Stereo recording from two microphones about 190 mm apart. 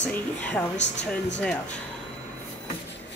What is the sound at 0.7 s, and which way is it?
Speech, 70° left (ahead or behind).